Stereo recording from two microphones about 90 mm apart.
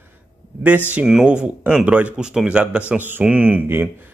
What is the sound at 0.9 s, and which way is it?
Speech, 5° right (ahead or behind).